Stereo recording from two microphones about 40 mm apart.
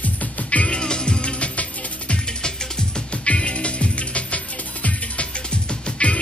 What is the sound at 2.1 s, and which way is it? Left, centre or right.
Music, centre.